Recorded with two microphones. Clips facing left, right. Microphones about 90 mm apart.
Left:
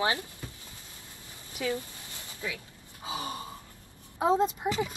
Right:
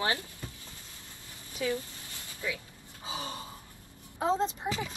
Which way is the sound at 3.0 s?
20° left (ahead or behind).